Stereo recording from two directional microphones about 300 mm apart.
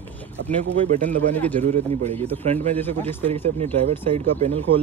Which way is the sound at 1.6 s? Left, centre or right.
Right.